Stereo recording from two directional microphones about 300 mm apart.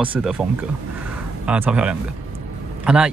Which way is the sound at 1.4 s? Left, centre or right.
Centre.